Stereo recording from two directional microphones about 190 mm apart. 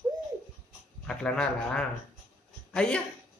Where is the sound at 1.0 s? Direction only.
5° left (ahead or behind).